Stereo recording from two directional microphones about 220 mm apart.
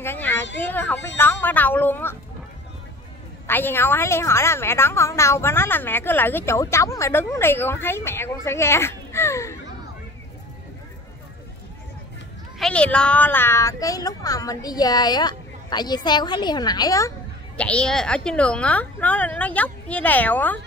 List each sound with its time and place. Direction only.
0.0 s a sound: 10° left (ahead or behind)
0.6 s a woman's voice: 5° left (ahead or behind)
3.4 s a woman's voice: 10° left (ahead or behind)
12.5 s a woman's voice: 5° left (ahead or behind)
17.6 s a woman's voice: 5° left (ahead or behind)